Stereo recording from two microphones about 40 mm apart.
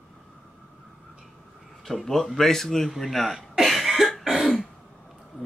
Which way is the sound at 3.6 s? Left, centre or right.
Centre.